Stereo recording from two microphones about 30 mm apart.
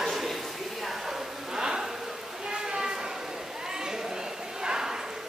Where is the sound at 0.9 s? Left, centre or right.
Centre.